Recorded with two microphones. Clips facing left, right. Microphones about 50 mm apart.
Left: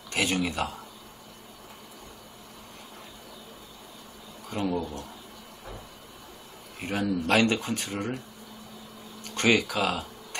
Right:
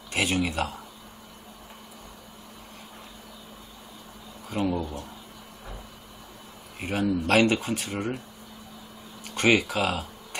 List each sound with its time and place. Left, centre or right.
0.1 s speech: centre
4.5 s speech: centre
6.8 s speech: centre
9.3 s speech: right